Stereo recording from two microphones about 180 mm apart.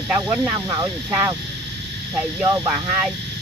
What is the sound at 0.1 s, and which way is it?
Speech, 10° right (ahead or behind).